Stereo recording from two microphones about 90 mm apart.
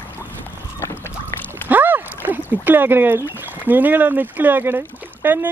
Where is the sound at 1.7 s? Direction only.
20° right (ahead or behind).